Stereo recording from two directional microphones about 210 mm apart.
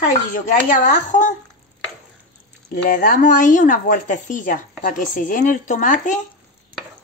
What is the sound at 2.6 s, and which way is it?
A woman's voice, 40° left (ahead or behind).